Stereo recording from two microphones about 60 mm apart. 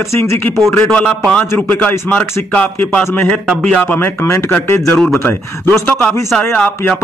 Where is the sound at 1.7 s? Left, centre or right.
Left.